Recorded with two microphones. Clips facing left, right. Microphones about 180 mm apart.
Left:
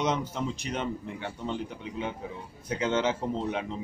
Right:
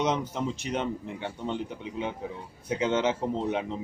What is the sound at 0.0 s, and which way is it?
Speech, 20° right (ahead or behind).